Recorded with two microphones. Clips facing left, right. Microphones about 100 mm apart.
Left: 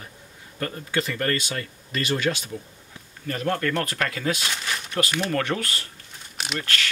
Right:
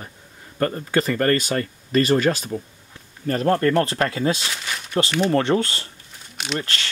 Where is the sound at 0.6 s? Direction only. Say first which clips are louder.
Right 6 dB; 40° right (ahead or behind).